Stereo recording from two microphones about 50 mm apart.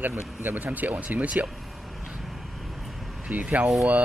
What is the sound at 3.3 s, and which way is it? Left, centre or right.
Speech, right.